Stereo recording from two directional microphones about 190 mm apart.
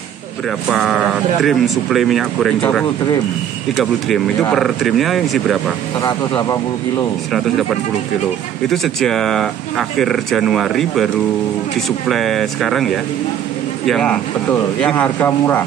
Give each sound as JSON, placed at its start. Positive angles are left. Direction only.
{"t": 0.7, "sound": "speech", "side_deg": 0}
{"t": 5.9, "sound": "speech", "side_deg": 15}
{"t": 8.6, "sound": "speech", "side_deg": 0}
{"t": 12.1, "sound": "speech", "side_deg": 0}